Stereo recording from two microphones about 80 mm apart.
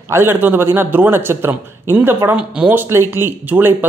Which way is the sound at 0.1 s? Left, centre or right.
Right.